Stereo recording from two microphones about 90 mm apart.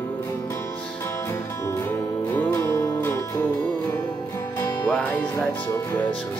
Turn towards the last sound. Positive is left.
turn(degrees=10)  # may be behind; listen again after turning